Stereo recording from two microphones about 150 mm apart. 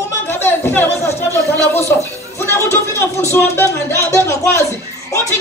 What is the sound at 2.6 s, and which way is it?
Speech, 20° left (ahead or behind).